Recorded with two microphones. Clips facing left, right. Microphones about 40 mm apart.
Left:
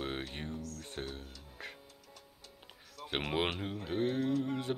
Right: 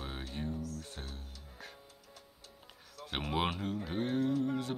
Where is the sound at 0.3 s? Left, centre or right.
Left.